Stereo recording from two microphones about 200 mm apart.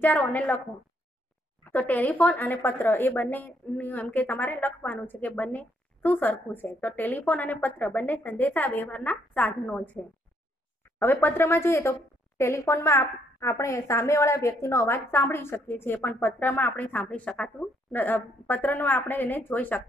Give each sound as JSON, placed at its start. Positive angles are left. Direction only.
{"t": 0.0, "sound": "speech", "side_deg": 10}
{"t": 1.6, "sound": "speech", "side_deg": 10}